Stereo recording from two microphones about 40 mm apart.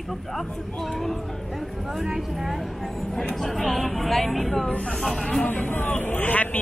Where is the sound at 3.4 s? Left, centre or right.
Centre.